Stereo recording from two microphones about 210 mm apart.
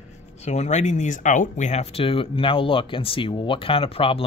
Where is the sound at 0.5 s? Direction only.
35° left (ahead or behind).